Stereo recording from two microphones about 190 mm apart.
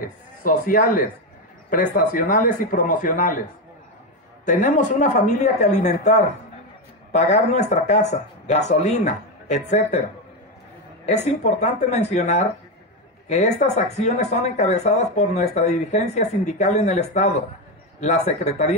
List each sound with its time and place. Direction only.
0.0 s a man's voice: 45° left (ahead or behind)
4.5 s speech: 40° left (ahead or behind)
11.1 s speech: 35° left (ahead or behind)